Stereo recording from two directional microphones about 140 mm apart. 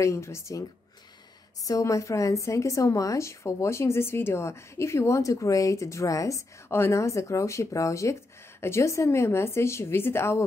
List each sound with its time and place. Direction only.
0.0 s a woman's voice: 20° left (ahead or behind)